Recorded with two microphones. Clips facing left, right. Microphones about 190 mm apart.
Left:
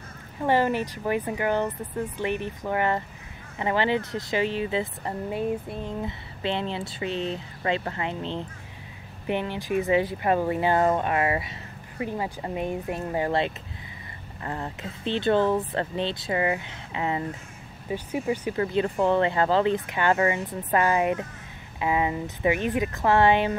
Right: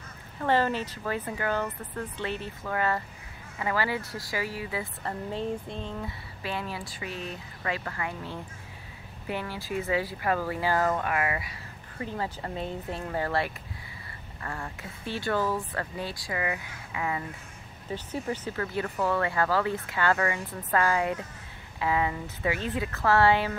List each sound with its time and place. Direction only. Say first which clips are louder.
0.4 s speech: left 3 dB; 15° left (ahead or behind)
5.3 s speech: left 5 dB; 10° left (ahead or behind); by 11.5 s 25° left (ahead or behind)
12.0 s speech: left 3 dB; 15° left (ahead or behind)
17.9 s speech: left 5 dB; 15° left (ahead or behind)